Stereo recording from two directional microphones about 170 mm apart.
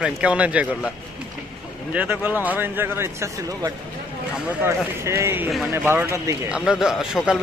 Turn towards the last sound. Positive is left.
turn(degrees=0)  # may be behind; listen again after turning